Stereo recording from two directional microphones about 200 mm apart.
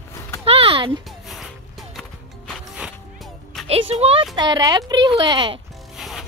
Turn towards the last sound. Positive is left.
turn(degrees=0)  # may be behind; listen again after turning